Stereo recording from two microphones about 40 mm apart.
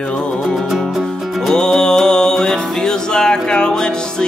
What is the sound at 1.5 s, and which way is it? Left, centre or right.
Music, centre.